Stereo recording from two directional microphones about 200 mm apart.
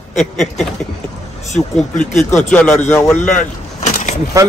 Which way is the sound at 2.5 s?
10° left (ahead or behind).